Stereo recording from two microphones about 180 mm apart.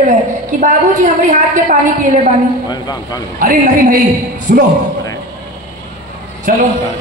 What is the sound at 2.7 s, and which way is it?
Speech, 20° left (ahead or behind).